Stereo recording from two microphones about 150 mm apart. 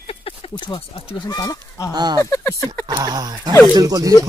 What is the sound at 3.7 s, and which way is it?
Speech, 25° right (ahead or behind).